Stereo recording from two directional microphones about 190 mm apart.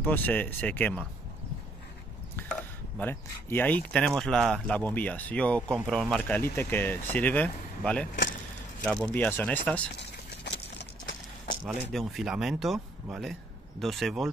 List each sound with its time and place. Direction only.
0.0 s speech: 10° left (ahead or behind)
3.0 s speech: 10° left (ahead or behind)
10.4 s a sound: 65° left (ahead or behind)
11.6 s speech: centre (ahead or behind)